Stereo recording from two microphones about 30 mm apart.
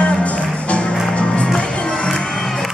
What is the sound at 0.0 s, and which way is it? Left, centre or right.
Music, left.